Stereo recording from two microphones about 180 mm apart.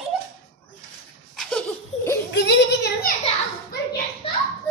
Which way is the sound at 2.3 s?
75° left (ahead or behind).